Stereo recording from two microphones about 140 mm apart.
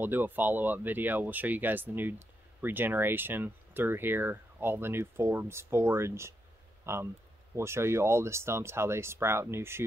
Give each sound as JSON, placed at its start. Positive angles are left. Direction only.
{"t": 0.0, "sound": "speech", "side_deg": -15}